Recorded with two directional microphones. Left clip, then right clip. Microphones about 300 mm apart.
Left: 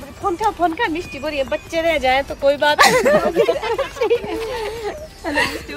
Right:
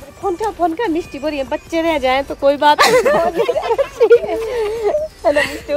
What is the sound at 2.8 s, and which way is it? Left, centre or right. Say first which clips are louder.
Speech: right 1 dB; centre.